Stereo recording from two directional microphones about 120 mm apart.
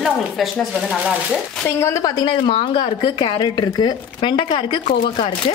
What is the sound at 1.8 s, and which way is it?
A woman's voice, 25° left (ahead or behind).